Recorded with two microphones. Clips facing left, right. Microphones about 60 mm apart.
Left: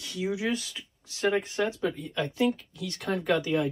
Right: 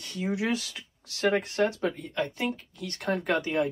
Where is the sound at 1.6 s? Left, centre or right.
Right.